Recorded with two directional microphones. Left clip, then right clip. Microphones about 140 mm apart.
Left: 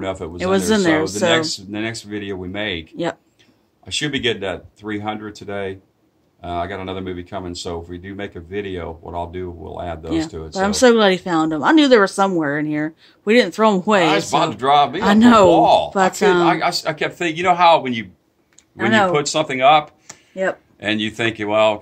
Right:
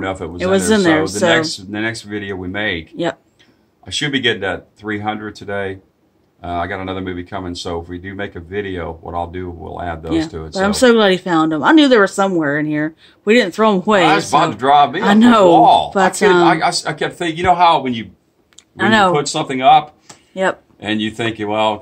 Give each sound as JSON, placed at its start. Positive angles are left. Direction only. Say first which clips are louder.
{"t": 0.0, "sound": "speech", "louder": "right 3 dB", "side_deg": 55}
{"t": 0.4, "sound": "a woman's voice", "louder": "right 3 dB", "side_deg": 10}
{"t": 1.5, "sound": "speech", "louder": "right 4 dB", "side_deg": 55}
{"t": 10.0, "sound": "a woman's voice", "louder": "right 3 dB", "side_deg": 10}
{"t": 14.4, "sound": "speech", "louder": "right 2 dB", "side_deg": 60}
{"t": 15.0, "sound": "a woman's voice", "louder": "right 1 dB", "side_deg": 15}
{"t": 15.5, "sound": "speech", "louder": "right 4 dB", "side_deg": 65}
{"t": 15.9, "sound": "speech", "louder": "right 3 dB", "side_deg": 5}
{"t": 16.4, "sound": "speech", "louder": "right 3 dB", "side_deg": 60}
{"t": 18.6, "sound": "speech", "louder": "right 3 dB", "side_deg": 5}
{"t": 19.1, "sound": "speech", "louder": "even", "side_deg": 60}
{"t": 20.8, "sound": "speech", "louder": "even", "side_deg": 65}